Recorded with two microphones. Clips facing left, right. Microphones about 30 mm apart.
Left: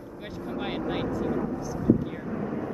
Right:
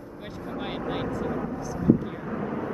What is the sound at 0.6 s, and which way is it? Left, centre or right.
Vehicle, centre.